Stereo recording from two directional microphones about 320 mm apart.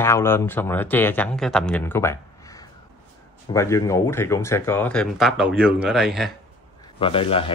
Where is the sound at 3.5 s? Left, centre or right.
Centre.